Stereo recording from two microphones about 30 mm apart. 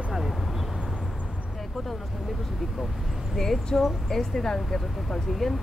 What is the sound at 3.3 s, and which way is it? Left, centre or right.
Speech, centre.